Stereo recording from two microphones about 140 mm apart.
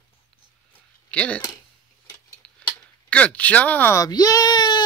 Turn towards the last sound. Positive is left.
turn(degrees=30)  # may be behind; listen again after turning